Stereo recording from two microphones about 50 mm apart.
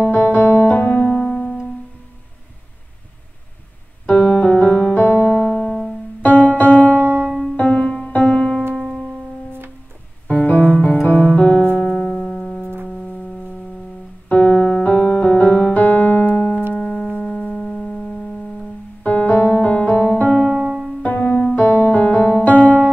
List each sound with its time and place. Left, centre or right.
0.0 s music: left
4.0 s piano: left
4.9 s music: left
7.8 s music: left
8.7 s music: centre
10.3 s music: left
11.3 s music: left
14.3 s piano: left
15.7 s keyboard: left
16.7 s music: left
19.0 s piano: left
21.0 s music: left
21.5 s music: left